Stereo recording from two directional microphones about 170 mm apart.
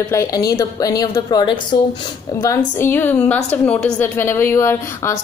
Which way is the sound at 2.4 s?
10° left (ahead or behind).